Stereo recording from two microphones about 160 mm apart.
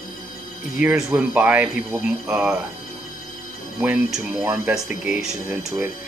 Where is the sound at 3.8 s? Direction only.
10° right (ahead or behind).